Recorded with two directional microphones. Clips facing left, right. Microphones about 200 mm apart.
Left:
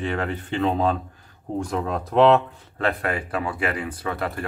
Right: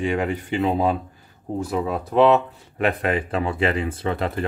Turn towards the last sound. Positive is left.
turn(degrees=-20)  # may be behind; listen again after turning